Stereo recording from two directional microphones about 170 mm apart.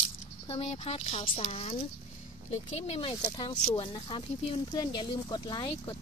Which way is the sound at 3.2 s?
25° left (ahead or behind).